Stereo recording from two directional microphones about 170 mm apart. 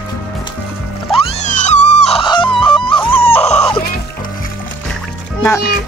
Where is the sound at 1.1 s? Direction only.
35° left (ahead or behind).